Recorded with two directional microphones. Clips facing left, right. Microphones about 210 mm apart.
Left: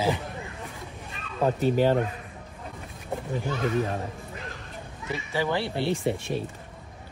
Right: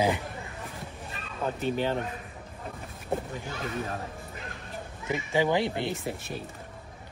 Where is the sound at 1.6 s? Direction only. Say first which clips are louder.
Left 6 dB; 40° left (ahead or behind).